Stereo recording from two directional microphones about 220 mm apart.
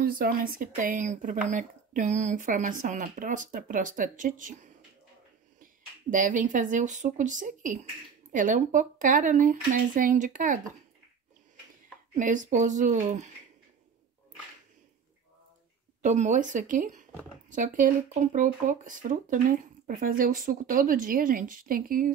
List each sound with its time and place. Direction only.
0.0 s speech: 40° right (ahead or behind)
12.2 s speech: 35° right (ahead or behind)
16.0 s speech: 35° right (ahead or behind)